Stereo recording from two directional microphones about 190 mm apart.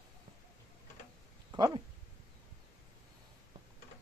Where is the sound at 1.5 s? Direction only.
20° right (ahead or behind).